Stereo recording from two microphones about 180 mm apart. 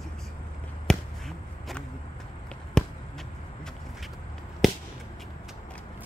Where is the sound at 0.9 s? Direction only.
5° left (ahead or behind).